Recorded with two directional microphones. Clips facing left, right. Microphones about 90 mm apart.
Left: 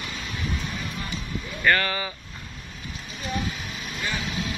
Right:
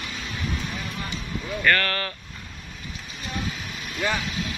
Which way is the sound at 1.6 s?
10° left (ahead or behind).